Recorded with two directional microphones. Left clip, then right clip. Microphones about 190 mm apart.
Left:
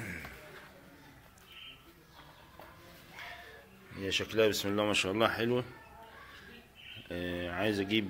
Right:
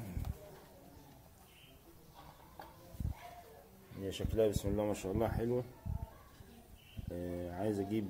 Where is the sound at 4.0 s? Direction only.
10° right (ahead or behind).